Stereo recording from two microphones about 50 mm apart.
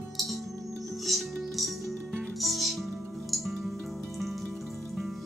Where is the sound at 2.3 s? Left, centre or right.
Centre.